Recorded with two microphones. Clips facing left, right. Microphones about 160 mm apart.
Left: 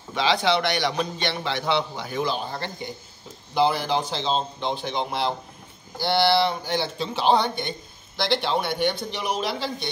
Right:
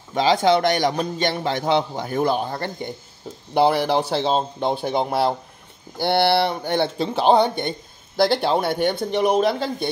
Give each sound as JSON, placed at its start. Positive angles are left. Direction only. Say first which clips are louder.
{"t": 0.1, "sound": "a man's voice", "louder": "right 5 dB", "side_deg": -45}
{"t": 3.5, "sound": "a man's voice", "louder": "right 4 dB", "side_deg": -65}